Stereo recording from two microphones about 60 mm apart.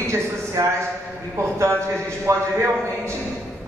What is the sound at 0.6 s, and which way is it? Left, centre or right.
Speech, right.